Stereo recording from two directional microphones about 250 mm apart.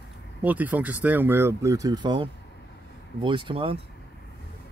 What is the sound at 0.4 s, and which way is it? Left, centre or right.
Speech, centre.